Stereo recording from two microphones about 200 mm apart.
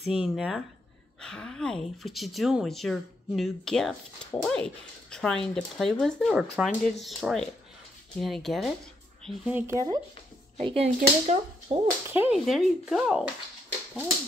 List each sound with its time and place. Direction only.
0.1 s speech: 5° right (ahead or behind)
10.6 s speech: 30° right (ahead or behind)
12.1 s speech: 10° right (ahead or behind)